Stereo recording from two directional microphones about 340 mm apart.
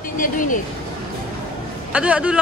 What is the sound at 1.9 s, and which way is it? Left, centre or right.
Speech, centre.